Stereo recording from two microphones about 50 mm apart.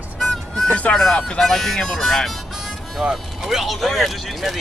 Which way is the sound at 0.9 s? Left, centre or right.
Centre.